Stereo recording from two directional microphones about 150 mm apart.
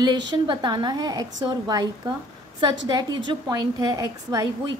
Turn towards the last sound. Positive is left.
turn(degrees=-25)  # may be behind; listen again after turning